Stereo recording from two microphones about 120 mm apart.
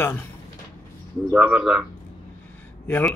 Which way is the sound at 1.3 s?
10° right (ahead or behind).